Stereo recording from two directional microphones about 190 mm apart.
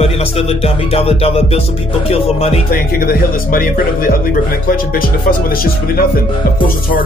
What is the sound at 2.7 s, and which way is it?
Speech, 50° left (ahead or behind).